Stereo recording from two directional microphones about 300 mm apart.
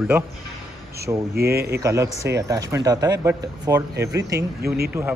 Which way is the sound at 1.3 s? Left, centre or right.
Right.